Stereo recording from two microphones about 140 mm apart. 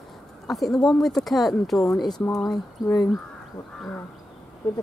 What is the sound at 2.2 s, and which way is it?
Speech, 25° left (ahead or behind).